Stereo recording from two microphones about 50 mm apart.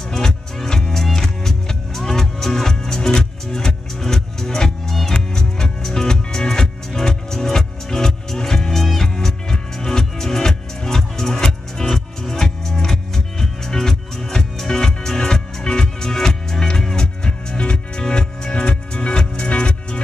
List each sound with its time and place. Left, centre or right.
0.1 s music: centre